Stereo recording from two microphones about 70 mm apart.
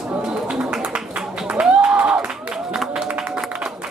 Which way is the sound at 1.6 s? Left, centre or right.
Centre.